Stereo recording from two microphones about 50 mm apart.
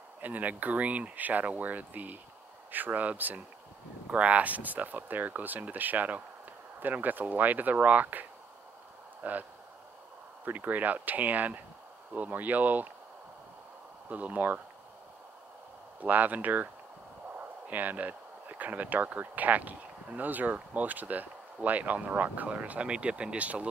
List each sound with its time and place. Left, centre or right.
0.2 s speech: right
14.0 s speech: right
16.0 s speech: right